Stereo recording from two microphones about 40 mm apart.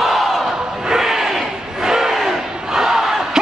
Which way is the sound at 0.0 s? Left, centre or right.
Centre.